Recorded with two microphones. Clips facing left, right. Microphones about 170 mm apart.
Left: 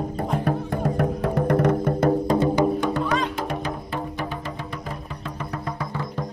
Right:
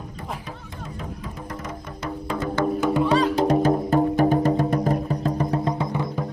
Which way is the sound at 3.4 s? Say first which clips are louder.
Right 9 dB; 40° right (ahead or behind).